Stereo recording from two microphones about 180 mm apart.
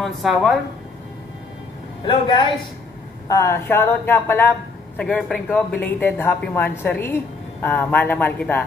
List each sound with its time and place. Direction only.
0.0 s speech: centre (ahead or behind)
2.0 s a man's voice: 25° left (ahead or behind)
3.3 s a man's voice: 15° left (ahead or behind)